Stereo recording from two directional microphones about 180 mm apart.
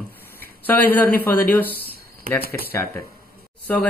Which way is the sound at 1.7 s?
60° left (ahead or behind).